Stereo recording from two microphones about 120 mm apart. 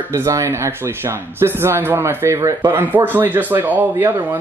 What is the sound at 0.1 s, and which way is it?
Speech, 20° right (ahead or behind).